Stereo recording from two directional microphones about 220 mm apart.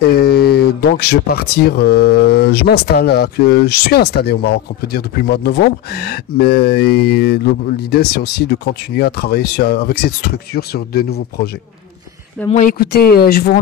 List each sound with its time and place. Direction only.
0.1 s speech: 45° left (ahead or behind)
12.4 s speech: 35° left (ahead or behind)